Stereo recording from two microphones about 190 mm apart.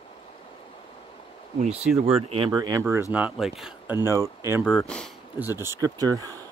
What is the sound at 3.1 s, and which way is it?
Speech, 5° right (ahead or behind).